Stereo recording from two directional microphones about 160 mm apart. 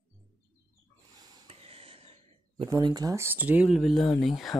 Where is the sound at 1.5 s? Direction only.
40° right (ahead or behind).